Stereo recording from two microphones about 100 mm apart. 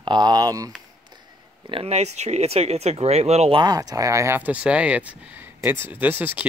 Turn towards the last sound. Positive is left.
turn(degrees=-20)  # may be behind; listen again after turning